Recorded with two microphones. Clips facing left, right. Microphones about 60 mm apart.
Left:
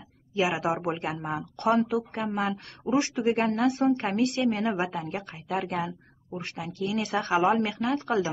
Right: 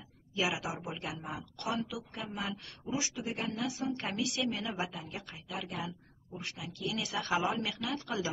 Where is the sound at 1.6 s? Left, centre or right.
Left.